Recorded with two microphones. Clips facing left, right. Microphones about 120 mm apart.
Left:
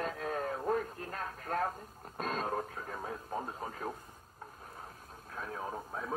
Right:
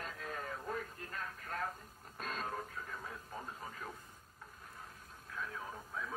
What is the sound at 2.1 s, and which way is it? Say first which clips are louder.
Radio: left 7 dB; 40° left (ahead or behind).